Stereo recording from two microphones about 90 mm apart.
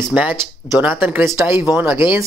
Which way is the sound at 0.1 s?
15° right (ahead or behind).